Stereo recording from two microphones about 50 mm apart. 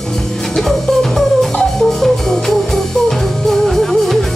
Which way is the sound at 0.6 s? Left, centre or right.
Centre.